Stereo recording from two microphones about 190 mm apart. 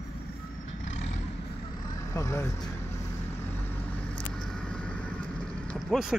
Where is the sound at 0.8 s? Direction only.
35° left (ahead or behind).